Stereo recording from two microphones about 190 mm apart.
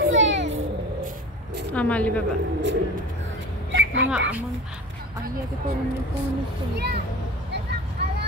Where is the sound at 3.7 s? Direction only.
80° right.